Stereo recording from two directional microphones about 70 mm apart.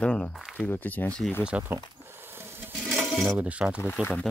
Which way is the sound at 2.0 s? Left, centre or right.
Right.